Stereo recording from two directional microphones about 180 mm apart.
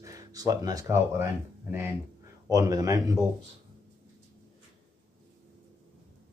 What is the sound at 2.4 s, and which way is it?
Speech, 20° right (ahead or behind).